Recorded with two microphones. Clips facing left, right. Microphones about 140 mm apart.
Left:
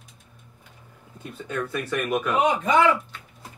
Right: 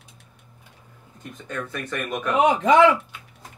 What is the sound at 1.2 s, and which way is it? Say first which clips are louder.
Speech: left 2 dB; 10° left (ahead or behind).